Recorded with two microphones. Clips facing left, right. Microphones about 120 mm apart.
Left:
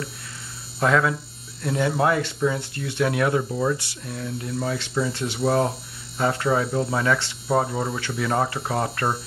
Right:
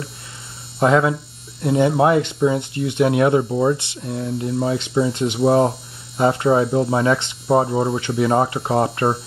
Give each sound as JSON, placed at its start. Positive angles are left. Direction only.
{"t": 0.7, "sound": "speech", "side_deg": -25}